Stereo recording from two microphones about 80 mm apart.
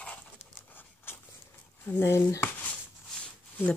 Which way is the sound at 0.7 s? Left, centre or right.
Left.